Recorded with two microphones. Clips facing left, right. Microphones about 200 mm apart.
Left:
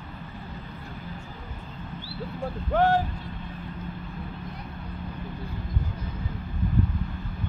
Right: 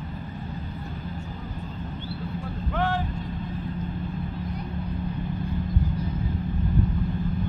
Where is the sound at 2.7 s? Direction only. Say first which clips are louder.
Left 5 dB; 45° left (ahead or behind).